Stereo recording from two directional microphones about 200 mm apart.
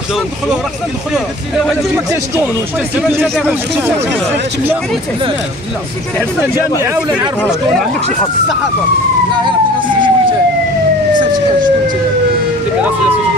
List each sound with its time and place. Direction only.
3.1 s speech: 10° right (ahead or behind)
9.4 s speech: 25° right (ahead or behind)